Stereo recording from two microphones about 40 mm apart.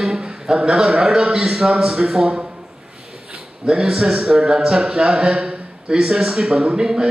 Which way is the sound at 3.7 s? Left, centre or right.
Centre.